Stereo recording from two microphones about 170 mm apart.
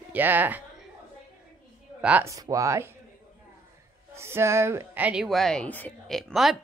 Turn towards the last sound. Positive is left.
turn(degrees=0)  # may be behind; listen again after turning